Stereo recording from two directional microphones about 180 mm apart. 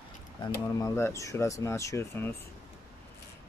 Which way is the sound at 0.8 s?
15° left (ahead or behind).